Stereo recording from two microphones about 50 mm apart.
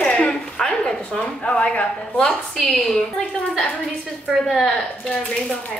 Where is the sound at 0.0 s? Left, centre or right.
Centre.